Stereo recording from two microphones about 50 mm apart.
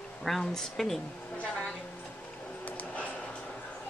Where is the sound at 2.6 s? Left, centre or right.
Left.